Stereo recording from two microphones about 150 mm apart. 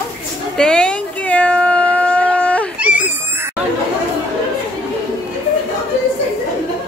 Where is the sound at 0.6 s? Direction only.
5° left (ahead or behind).